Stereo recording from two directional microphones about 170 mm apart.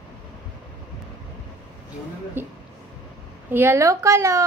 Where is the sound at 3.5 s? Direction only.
15° right (ahead or behind).